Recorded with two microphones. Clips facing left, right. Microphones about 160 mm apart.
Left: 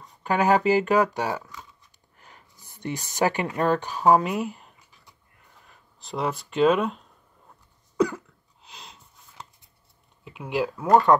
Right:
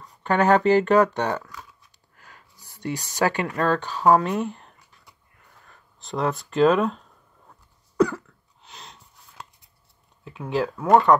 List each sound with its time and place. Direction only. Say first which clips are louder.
0.2 s speech: right 2 dB; 10° left (ahead or behind)
2.1 s speech: right 1 dB; 20° left (ahead or behind); by 6.7 s 5° left (ahead or behind)
10.2 s speech: right 1 dB; 5° left (ahead or behind)